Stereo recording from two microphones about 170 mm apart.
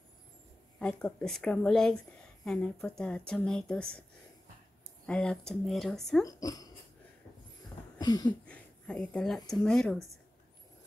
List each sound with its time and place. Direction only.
0.7 s speech: 5° left (ahead or behind)
5.0 s speech: 5° left (ahead or behind)
6.2 s speech: 20° left (ahead or behind)
8.0 s a sound: 20° left (ahead or behind)
8.3 s speech: 5° left (ahead or behind)